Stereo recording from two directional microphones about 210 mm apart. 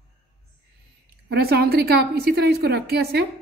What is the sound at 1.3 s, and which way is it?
A woman's voice, 50° right (ahead or behind).